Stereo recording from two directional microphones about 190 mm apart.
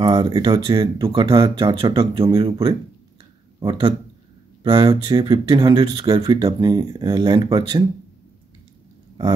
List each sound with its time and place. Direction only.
0.0 s speech: 25° right (ahead or behind)